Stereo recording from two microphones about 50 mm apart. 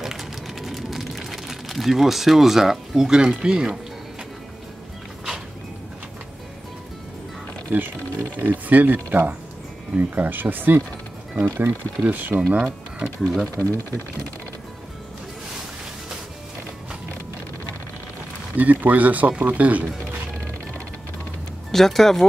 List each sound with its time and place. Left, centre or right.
0.0 s a sound: centre
7.7 s speech: right
12.0 s speech: right
12.4 s speech: right
13.0 s speech: centre
13.6 s speech: left
18.6 s speech: right
21.7 s speech: centre